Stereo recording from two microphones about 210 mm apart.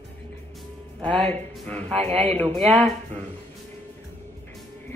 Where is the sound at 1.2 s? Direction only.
5° left (ahead or behind).